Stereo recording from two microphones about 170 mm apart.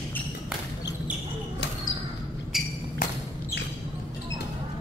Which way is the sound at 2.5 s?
Centre (ahead or behind).